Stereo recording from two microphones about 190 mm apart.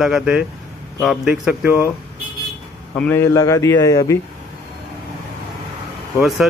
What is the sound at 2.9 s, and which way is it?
Speech, 10° left (ahead or behind).